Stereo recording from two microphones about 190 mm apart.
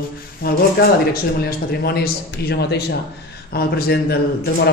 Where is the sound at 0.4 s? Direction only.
50° left (ahead or behind).